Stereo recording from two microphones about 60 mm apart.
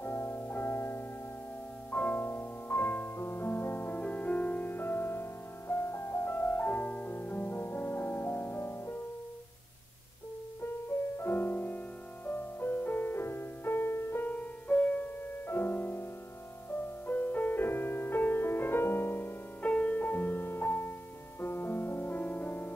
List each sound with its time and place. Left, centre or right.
0.0 s music: left
1.9 s music: left
4.0 s music: left
11.1 s music: left
15.4 s music: left
19.6 s music: left